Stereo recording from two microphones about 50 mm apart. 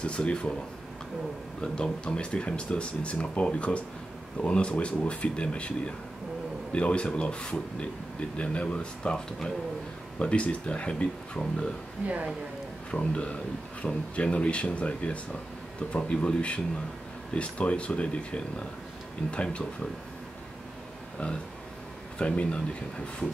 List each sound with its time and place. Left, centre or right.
0.0 s speech: left
1.6 s speech: centre
12.9 s speech: centre
22.2 s speech: left